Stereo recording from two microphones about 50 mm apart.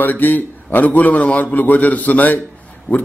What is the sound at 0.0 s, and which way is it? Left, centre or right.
A man's voice, left.